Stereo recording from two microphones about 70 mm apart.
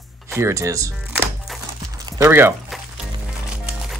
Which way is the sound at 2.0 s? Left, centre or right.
Right.